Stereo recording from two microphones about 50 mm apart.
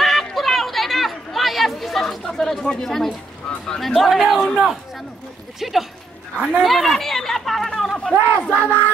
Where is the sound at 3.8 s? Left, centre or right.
Centre.